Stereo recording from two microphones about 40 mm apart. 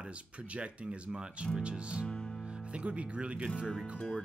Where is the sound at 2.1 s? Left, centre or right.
Left.